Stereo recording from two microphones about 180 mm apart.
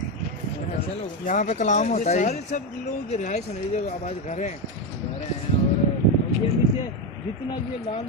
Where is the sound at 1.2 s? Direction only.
45° left (ahead or behind).